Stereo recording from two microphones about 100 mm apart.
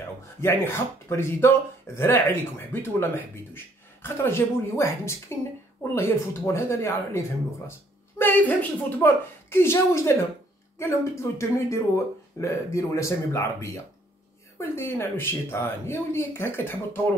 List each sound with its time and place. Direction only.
0.4 s speech: 25° left (ahead or behind)